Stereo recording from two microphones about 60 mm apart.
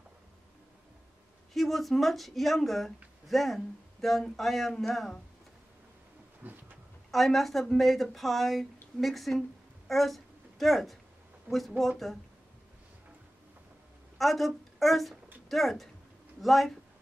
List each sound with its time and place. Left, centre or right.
1.5 s speech: centre
6.4 s a sound: right
7.1 s a woman's voice: centre
14.1 s speech: centre